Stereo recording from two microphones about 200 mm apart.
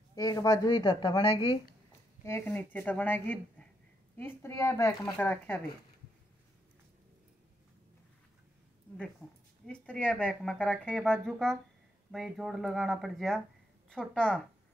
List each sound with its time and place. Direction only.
0.1 s speech: 20° left (ahead or behind)
2.2 s a woman's voice: 10° left (ahead or behind)
9.7 s a woman's voice: 5° left (ahead or behind)